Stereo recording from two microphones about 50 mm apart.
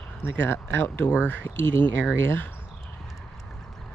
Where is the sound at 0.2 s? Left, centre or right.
Left.